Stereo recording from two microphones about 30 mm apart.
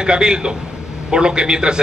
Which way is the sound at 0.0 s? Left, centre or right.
Right.